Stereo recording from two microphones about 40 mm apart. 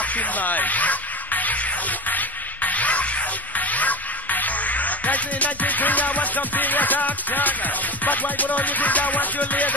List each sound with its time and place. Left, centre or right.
0.0 s speech: left